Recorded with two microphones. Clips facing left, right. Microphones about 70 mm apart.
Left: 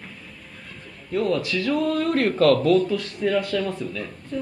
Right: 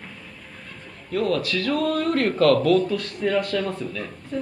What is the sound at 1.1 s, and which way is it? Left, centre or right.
Speech, left.